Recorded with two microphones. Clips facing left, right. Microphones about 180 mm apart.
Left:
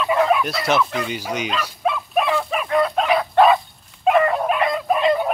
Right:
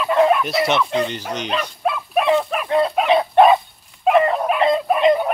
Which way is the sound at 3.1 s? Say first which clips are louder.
Right 3 dB; 20° right (ahead or behind).